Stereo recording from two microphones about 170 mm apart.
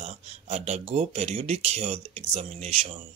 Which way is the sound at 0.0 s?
40° right (ahead or behind).